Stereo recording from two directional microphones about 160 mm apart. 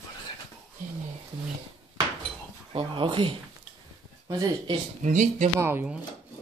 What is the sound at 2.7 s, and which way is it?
Speech, 30° right (ahead or behind).